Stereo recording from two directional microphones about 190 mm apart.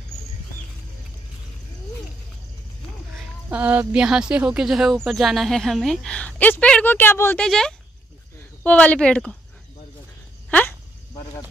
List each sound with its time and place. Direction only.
3.4 s speech: 10° right (ahead or behind)